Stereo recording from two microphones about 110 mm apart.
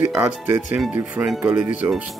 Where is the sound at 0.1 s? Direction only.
10° right (ahead or behind).